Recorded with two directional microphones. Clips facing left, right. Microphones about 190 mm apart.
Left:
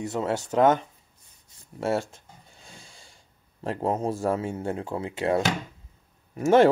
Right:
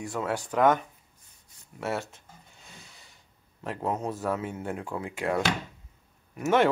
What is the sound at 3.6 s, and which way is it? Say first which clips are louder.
Speech: left 4 dB; 30° left (ahead or behind).